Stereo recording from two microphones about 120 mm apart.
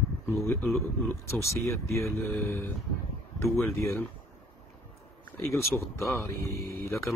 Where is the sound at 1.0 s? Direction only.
25° left (ahead or behind).